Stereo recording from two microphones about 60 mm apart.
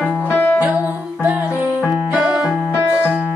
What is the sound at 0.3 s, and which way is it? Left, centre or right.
Music, left.